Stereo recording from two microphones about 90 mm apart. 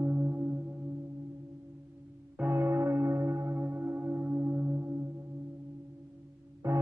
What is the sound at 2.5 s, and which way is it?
Singing bowl, 30° right (ahead or behind).